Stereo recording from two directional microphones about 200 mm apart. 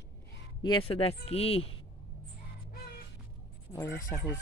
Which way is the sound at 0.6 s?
25° left (ahead or behind).